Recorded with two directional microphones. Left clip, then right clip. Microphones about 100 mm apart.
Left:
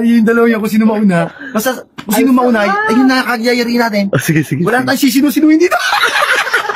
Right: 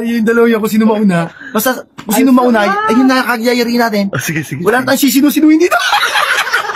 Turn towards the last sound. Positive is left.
turn(degrees=30)  # may be behind; listen again after turning